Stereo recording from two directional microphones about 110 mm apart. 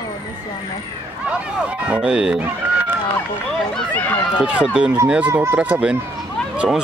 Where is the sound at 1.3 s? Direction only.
10° right (ahead or behind).